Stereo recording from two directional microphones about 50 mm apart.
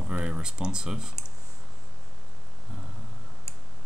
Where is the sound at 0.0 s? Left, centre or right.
Centre.